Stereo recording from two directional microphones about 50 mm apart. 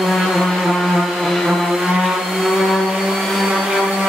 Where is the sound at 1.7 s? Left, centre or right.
Centre.